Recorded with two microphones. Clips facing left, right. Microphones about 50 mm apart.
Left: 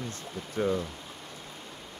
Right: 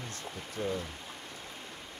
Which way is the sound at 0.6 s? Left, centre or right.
Left.